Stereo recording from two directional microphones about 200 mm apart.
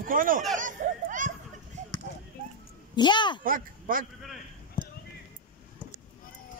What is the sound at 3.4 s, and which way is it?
Speech, 45° right (ahead or behind).